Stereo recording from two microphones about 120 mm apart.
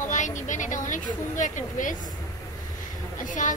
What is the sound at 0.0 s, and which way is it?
Speech, 90° left.